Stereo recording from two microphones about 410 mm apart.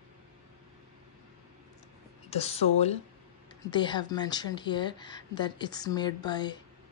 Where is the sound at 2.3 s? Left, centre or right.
Centre.